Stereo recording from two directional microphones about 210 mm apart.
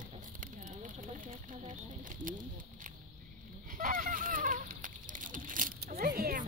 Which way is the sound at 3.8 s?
40° right (ahead or behind).